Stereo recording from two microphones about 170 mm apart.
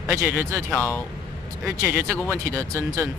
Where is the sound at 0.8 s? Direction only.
15° left (ahead or behind).